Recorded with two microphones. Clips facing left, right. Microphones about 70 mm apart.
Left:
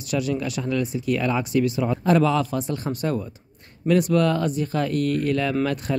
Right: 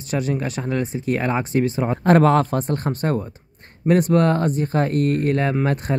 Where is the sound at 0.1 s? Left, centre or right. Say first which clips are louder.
Right 1 dB; right.